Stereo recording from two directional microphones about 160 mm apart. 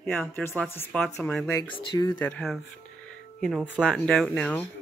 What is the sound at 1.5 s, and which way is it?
Speech, 20° left (ahead or behind).